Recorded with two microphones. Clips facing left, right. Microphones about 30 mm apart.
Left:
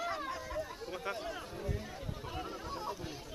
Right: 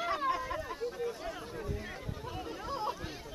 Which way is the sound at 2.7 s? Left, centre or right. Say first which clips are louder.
Right 6 dB; right.